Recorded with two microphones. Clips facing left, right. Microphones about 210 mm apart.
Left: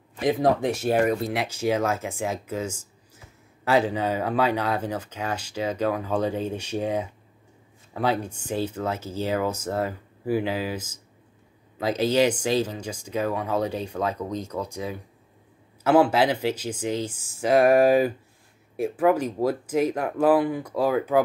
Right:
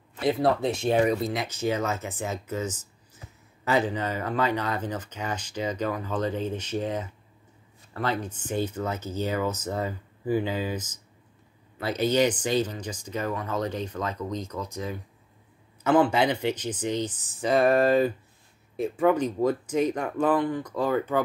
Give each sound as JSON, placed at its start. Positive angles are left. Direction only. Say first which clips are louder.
{"t": 0.1, "sound": "speech", "louder": "left 2 dB", "side_deg": 15}
{"t": 11.8, "sound": "speech", "louder": "left 2 dB", "side_deg": 90}
{"t": 12.2, "sound": "speech", "louder": "left 2 dB", "side_deg": 10}